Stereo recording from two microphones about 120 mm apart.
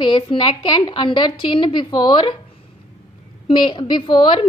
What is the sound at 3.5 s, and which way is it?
Speech, 40° left (ahead or behind).